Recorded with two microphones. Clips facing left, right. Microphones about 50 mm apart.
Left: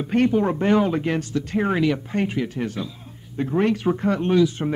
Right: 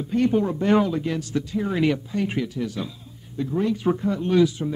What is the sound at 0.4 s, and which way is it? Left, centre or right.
Speech, left.